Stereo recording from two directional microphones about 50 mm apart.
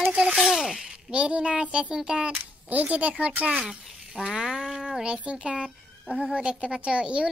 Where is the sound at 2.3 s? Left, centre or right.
Right.